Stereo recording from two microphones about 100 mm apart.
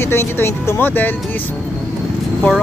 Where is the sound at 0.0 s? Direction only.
25° left (ahead or behind).